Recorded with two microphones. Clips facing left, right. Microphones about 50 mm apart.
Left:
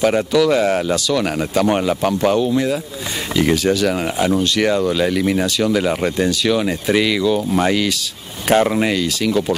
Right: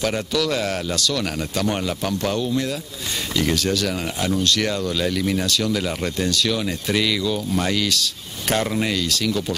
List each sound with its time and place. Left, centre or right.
0.0 s speech: centre